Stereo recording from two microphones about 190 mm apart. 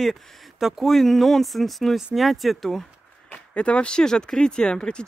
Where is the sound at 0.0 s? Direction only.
Centre (ahead or behind).